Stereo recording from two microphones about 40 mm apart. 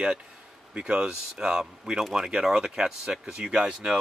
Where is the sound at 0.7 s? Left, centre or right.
Right.